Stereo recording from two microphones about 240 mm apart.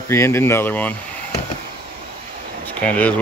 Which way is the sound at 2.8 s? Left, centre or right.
Centre.